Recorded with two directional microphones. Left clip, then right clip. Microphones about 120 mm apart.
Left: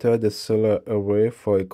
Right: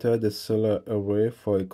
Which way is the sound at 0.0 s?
30° left (ahead or behind).